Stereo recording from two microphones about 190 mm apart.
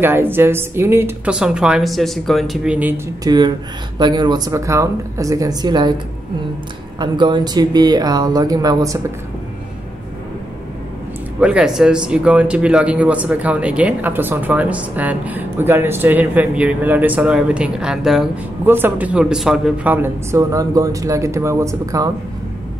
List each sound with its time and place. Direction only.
0.0 s a woman's voice: 10° right (ahead or behind)
3.3 s speech: 20° right (ahead or behind)
7.0 s speech: 25° right (ahead or behind)
11.3 s speech: 5° right (ahead or behind)